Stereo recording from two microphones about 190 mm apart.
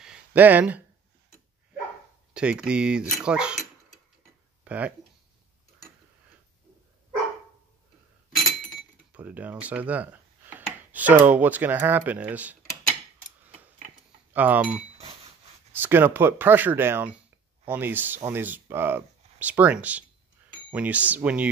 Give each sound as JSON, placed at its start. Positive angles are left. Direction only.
{"t": 0.0, "sound": "a sound", "side_deg": -5}
{"t": 2.3, "sound": "speech", "side_deg": -5}
{"t": 4.6, "sound": "speech", "side_deg": -5}
{"t": 8.5, "sound": "speech", "side_deg": -5}
{"t": 14.3, "sound": "speech", "side_deg": -10}
{"t": 15.8, "sound": "speech", "side_deg": -10}